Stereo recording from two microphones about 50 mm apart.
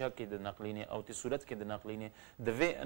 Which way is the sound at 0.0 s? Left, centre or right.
Centre.